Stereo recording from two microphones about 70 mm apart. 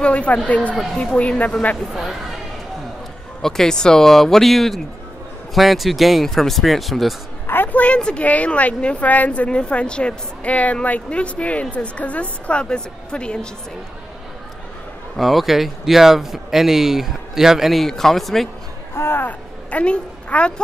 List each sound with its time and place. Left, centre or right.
0.0 s a woman's voice: centre
3.4 s speech: centre
7.4 s a woman's voice: left
15.1 s speech: centre
18.9 s speech: left
19.2 s a woman's voice: centre